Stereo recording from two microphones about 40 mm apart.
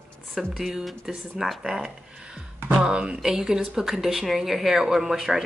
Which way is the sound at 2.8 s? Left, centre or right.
Right.